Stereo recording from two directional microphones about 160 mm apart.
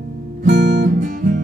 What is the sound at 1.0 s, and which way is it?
Music, 60° right (ahead or behind).